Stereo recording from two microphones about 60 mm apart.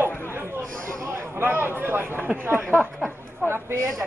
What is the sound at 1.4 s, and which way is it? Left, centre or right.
Speech, right.